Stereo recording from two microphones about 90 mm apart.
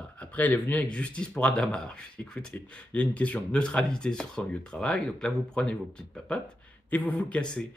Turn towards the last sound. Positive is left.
turn(degrees=15)  # may be behind; listen again after turning